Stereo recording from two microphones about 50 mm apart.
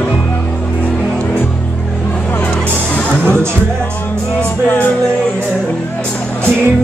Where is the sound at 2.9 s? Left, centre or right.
Left.